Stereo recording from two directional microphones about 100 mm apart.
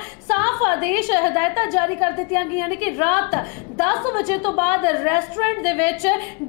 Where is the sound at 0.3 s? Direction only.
20° left (ahead or behind).